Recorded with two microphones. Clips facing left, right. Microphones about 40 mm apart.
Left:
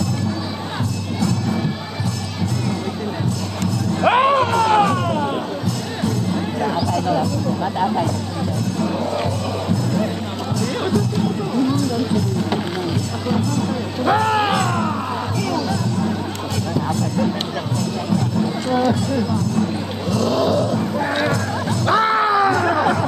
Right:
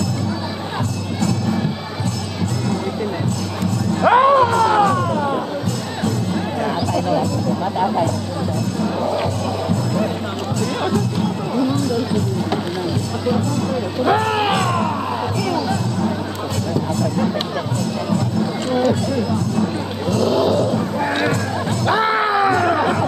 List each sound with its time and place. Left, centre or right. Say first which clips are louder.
4.0 s music: right 3 dB; left
6.3 s music: even; centre
14.0 s music: left 1 dB; centre
20.2 s a sound: right 1 dB; centre